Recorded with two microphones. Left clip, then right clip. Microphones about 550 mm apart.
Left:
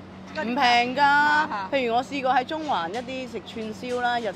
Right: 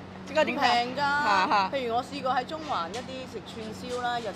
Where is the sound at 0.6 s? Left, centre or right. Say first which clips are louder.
Left 5 dB; left.